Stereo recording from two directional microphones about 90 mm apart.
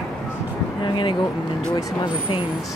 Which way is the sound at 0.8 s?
65° left (ahead or behind).